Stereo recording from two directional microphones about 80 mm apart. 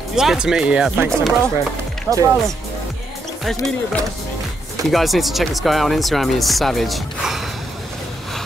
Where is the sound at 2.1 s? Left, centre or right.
Right.